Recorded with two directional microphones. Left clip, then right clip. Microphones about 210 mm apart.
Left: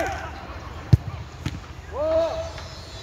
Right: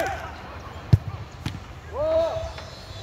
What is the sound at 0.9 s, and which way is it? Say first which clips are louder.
Basketball bounce: left 1 dB; 5° left (ahead or behind).